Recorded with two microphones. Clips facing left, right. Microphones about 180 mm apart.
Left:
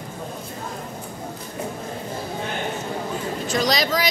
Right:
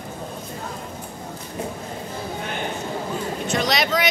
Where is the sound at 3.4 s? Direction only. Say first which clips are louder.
Left 1 dB; 35° left (ahead or behind).